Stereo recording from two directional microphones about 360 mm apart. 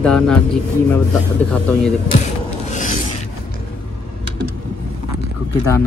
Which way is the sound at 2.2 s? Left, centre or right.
Centre.